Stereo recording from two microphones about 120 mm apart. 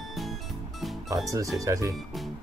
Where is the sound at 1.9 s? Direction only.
Centre (ahead or behind).